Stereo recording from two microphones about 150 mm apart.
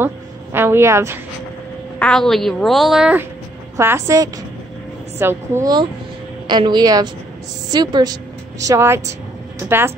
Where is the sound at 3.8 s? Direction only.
15° right (ahead or behind).